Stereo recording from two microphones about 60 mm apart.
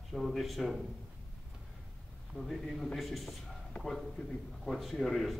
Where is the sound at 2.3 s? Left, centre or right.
Centre.